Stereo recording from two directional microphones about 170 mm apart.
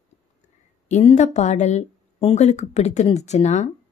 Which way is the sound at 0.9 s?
40° left (ahead or behind).